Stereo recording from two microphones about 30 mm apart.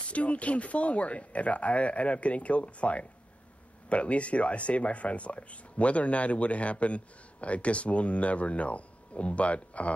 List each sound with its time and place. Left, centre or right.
0.1 s speech: left